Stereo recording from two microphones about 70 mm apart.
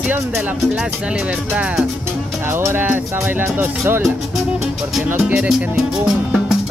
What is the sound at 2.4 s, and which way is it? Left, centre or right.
Speech, right.